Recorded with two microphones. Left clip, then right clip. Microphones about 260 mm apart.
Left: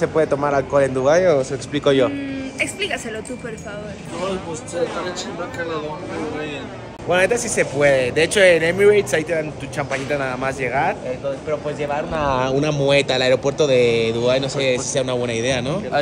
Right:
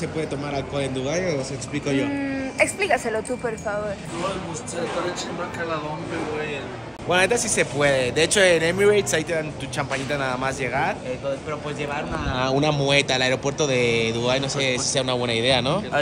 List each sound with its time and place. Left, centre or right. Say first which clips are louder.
0.2 s speech: left 10 dB; centre
1.7 s speech: left 9 dB; centre
7.1 s speech: left 3 dB; centre